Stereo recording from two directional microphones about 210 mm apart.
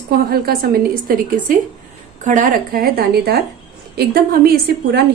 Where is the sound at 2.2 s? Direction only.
35° right (ahead or behind).